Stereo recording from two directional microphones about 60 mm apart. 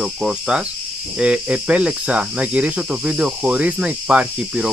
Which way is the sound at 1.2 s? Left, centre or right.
Centre.